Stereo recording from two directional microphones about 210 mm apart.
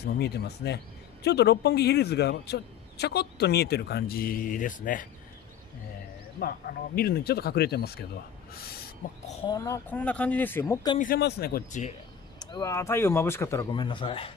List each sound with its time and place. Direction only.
0.0 s speech: 50° left (ahead or behind)
7.0 s speech: 50° left (ahead or behind)
9.0 s speech: 40° left (ahead or behind)
9.5 s speech: 15° left (ahead or behind)
11.0 s speech: 45° left (ahead or behind)
12.4 s speech: 20° left (ahead or behind)